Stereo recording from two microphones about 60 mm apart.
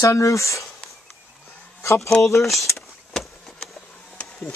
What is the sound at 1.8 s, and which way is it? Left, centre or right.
Speech, left.